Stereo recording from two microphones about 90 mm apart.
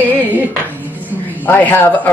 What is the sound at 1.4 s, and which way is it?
Speech, 20° left (ahead or behind).